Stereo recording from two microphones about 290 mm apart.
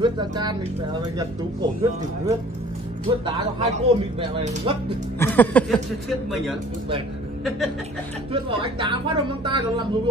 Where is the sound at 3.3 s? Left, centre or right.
Right.